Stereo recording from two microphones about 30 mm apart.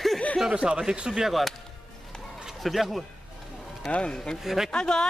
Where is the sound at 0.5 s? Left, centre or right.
Right.